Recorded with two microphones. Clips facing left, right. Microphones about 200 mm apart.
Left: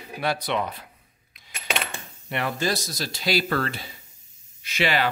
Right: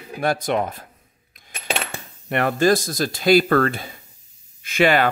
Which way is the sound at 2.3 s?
50° right (ahead or behind).